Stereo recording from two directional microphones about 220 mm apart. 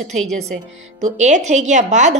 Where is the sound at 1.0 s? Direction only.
35° right (ahead or behind).